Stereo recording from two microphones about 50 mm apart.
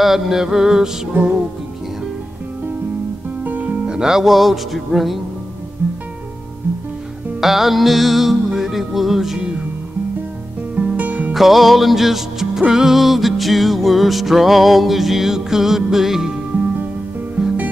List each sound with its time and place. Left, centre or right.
0.0 s mantra: centre
1.1 s music: right
3.4 s music: right
3.8 s music: centre
7.3 s music: centre
10.8 s music: right
11.3 s music: centre